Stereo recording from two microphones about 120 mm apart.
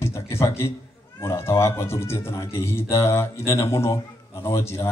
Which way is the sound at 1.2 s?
25° left (ahead or behind).